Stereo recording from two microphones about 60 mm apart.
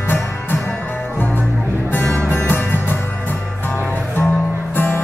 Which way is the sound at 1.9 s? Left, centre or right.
Left.